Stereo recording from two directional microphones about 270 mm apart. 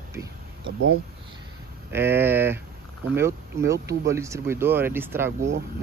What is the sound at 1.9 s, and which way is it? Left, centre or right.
Speech, centre.